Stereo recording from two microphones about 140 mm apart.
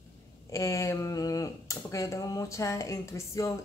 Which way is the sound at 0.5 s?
20° left (ahead or behind).